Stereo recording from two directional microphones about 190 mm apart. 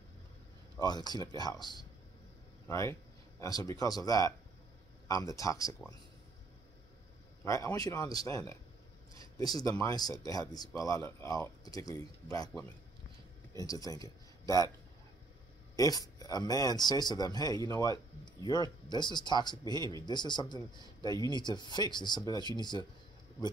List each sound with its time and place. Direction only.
0.7 s speech: 20° left (ahead or behind)
7.4 s speech: 15° left (ahead or behind)
15.7 s speech: 20° left (ahead or behind)